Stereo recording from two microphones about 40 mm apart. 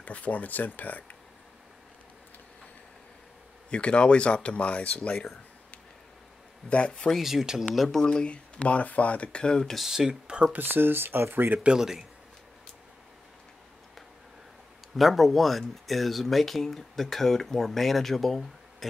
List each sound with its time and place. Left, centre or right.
0.0 s speech: left
3.7 s speech: left
6.7 s speech: left
7.2 s speech: centre
8.0 s speech: left
9.4 s speech: left
9.8 s speech: centre
10.5 s speech: right
15.0 s speech: centre